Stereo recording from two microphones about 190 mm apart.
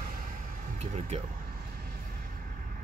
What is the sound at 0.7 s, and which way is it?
Speech, 35° right (ahead or behind).